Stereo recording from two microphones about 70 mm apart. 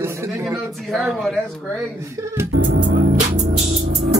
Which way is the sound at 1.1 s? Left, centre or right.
Centre.